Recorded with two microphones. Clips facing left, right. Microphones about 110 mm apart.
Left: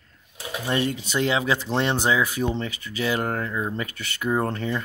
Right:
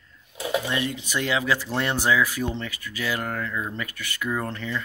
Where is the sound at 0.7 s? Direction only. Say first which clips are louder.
Left 3 dB; 40° left (ahead or behind).